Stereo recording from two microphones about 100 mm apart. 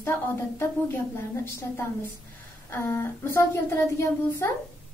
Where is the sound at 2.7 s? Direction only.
20° left (ahead or behind).